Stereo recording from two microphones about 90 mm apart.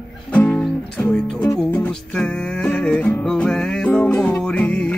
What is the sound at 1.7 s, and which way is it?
Music, 15° left (ahead or behind).